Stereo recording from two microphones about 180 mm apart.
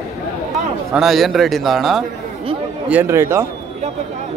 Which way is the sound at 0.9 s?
Centre (ahead or behind).